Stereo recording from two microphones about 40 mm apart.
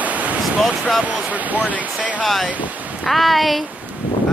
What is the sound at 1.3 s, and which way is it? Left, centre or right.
Speech, right.